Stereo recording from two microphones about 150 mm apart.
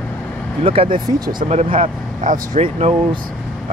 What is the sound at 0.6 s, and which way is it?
Speech, 40° right (ahead or behind).